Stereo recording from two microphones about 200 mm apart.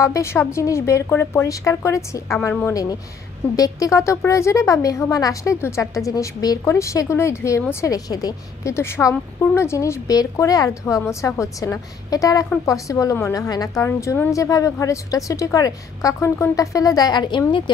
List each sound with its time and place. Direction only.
0.0 s a woman's voice: 15° left (ahead or behind)